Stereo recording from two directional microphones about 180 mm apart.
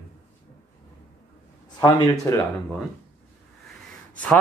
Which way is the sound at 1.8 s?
20° left (ahead or behind).